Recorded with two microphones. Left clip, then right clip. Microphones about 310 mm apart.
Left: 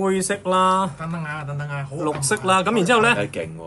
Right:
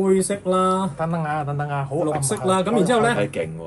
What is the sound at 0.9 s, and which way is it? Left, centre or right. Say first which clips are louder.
Speech: right 6 dB; centre.